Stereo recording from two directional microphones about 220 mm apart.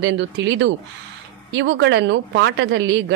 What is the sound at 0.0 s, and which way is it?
Speech, 55° right (ahead or behind).